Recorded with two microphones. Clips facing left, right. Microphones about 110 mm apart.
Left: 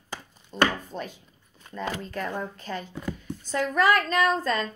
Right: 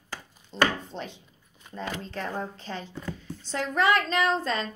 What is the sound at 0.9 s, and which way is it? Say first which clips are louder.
A woman's voice: left 2 dB; 25° right (ahead or behind).